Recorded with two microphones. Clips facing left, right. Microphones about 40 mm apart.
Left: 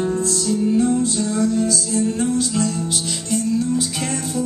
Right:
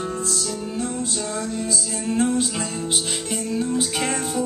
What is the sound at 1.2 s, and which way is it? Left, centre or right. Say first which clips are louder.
Music: left 7 dB; right.